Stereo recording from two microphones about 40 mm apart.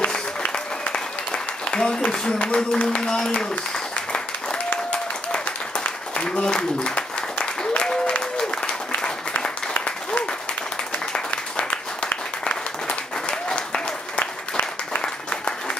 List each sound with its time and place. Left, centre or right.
1.7 s speech: centre
6.4 s applause: left
12.4 s applause: left
14.2 s applause: left